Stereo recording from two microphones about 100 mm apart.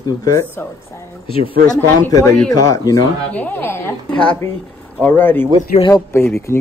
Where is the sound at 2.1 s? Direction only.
40° left (ahead or behind).